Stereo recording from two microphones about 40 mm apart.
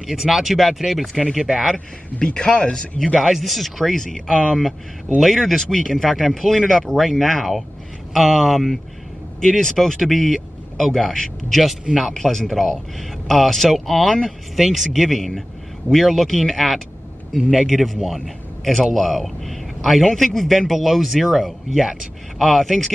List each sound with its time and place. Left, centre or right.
0.0 s speech: centre
1.5 s speech: centre
2.1 s speech: left
3.2 s speech: centre
5.4 s speech: centre
9.4 s a man's voice: centre